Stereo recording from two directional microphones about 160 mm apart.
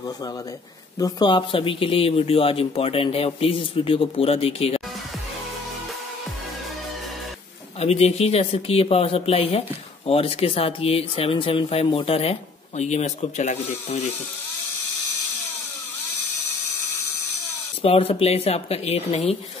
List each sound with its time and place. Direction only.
0.9 s speech: 25° left (ahead or behind)
7.8 s speech: 40° left (ahead or behind)
17.8 s speech: 40° left (ahead or behind)